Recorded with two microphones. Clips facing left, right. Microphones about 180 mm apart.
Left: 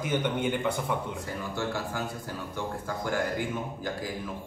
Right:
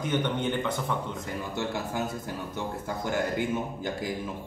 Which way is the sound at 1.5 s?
20° right (ahead or behind).